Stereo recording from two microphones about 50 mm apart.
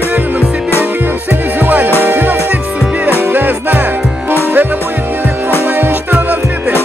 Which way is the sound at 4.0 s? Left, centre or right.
Centre.